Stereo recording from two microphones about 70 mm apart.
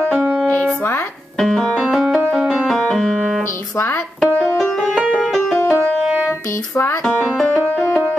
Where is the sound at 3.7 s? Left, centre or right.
Left.